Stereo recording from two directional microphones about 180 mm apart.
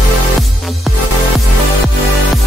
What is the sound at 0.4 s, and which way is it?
Music, centre (ahead or behind).